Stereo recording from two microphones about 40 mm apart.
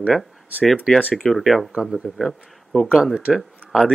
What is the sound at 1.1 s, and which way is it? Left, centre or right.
Speech, centre.